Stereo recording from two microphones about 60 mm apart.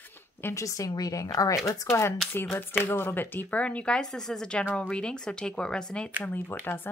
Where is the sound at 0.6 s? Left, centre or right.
Left.